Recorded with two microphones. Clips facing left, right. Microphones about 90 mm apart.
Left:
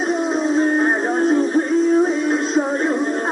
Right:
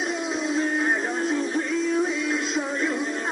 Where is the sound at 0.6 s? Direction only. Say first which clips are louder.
Left 6 dB; 40° left (ahead or behind).